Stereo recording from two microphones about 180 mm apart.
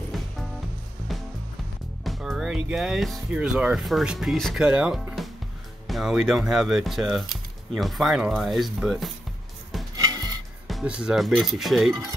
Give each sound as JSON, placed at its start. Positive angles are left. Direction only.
{"t": 0.1, "sound": "music", "side_deg": 0}
{"t": 2.0, "sound": "speech", "side_deg": 0}
{"t": 10.7, "sound": "speech", "side_deg": -5}